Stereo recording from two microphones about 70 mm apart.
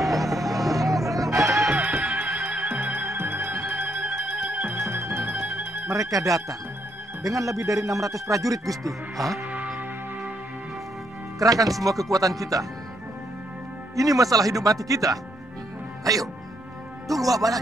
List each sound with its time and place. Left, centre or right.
0.0 s music: centre
0.7 s music: right
1.8 s music: right
4.7 s music: right
5.9 s speech: right
9.1 s speech: centre
11.3 s speech: right
13.9 s speech: right